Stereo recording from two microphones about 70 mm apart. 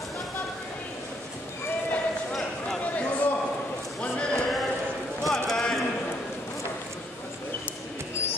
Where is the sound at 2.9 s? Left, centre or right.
Left.